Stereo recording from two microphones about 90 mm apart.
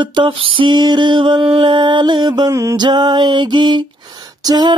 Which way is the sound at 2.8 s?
55° right (ahead or behind).